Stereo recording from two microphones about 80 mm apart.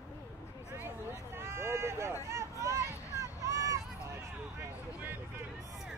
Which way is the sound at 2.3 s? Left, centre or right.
Right.